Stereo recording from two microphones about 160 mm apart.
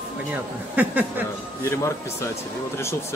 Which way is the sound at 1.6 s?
15° left (ahead or behind).